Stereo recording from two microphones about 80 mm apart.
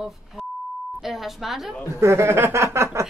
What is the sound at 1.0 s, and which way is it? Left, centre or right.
Speech, centre.